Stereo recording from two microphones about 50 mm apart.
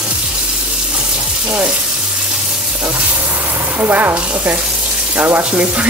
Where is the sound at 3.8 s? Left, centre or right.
Right.